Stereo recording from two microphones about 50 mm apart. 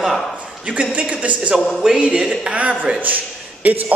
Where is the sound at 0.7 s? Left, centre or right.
Right.